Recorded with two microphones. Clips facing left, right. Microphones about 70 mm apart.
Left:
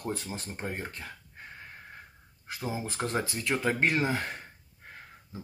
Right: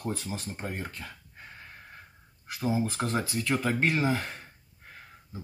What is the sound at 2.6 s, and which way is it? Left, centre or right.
Speech, centre.